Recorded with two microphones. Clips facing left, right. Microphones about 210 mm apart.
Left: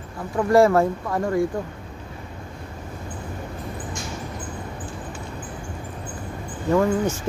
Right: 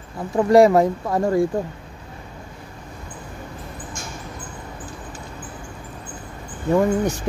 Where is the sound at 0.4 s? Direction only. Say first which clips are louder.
Right 3 dB; 20° right (ahead or behind).